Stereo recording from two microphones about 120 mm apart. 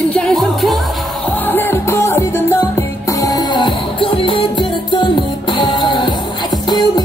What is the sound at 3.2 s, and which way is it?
Music, 30° left (ahead or behind).